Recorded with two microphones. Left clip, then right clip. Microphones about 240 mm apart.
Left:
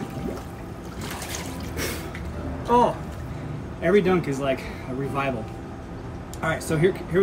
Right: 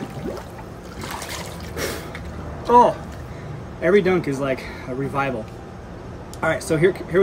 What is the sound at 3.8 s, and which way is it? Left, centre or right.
Speech, centre.